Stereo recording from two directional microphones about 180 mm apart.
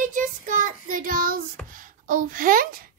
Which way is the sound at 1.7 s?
50° right (ahead or behind).